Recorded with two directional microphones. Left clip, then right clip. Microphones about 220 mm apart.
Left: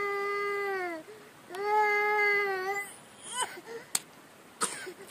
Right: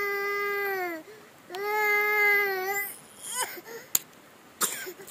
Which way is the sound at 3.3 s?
35° right (ahead or behind).